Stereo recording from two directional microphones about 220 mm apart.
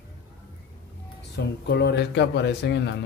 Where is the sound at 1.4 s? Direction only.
50° left (ahead or behind).